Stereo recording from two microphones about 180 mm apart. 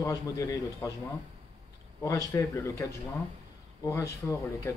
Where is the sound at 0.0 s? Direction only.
20° left (ahead or behind).